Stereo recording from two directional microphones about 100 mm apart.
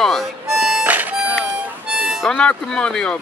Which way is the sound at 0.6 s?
Centre (ahead or behind).